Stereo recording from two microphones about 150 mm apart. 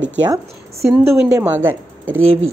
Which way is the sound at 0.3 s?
20° right (ahead or behind).